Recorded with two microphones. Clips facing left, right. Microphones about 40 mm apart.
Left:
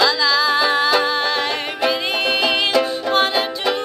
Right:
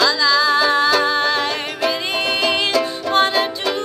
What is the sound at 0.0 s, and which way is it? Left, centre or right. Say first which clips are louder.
Music: right 1 dB; centre.